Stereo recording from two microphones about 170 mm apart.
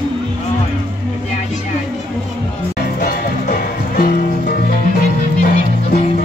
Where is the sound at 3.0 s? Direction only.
55° left (ahead or behind).